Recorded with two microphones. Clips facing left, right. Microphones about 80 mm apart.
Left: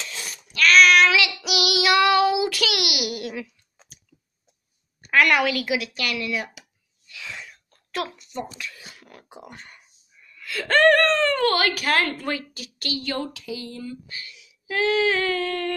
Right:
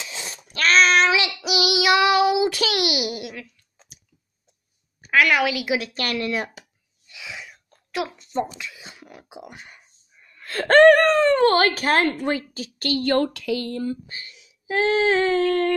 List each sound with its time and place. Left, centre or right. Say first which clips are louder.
0.0 s a sound: right 1 dB; right
0.4 s child singing: left 2 dB; right
3.3 s clicking: left 5 dB; centre
5.0 s a woman's voice: even; centre
5.7 s speech: right 2 dB; right
7.1 s sneeze: even; centre
8.2 s speech: right 7 dB; right
8.5 s speech: even; centre
10.2 s wail: right 5 dB; right
10.9 s speech: right 4 dB; centre; by 12.9 s right
12.9 s speech: right 8 dB; right
14.0 s a sound: even; right